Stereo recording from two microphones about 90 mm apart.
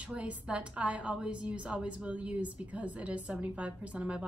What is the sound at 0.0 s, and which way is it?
A woman's voice, 15° right (ahead or behind).